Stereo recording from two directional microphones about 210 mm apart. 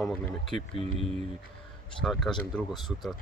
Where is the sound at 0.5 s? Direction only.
30° right (ahead or behind).